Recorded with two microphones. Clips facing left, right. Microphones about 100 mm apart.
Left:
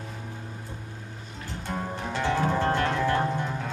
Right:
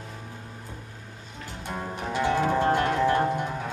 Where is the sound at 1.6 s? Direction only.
10° right (ahead or behind).